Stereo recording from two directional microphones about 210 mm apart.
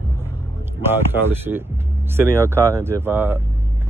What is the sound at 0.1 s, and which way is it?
Speech, 10° right (ahead or behind).